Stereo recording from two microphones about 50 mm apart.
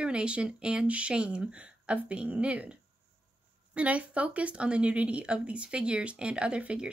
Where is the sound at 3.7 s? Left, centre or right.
Right.